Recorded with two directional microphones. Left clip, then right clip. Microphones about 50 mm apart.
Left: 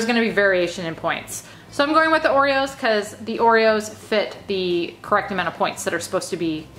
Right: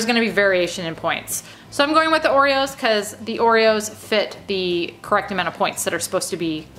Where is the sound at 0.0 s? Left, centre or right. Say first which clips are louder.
Right 1 dB; right.